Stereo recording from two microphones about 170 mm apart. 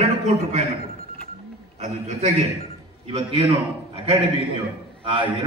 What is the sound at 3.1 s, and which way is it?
Speech, 35° right (ahead or behind).